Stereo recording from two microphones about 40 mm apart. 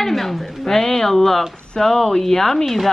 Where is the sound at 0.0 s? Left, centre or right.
Centre.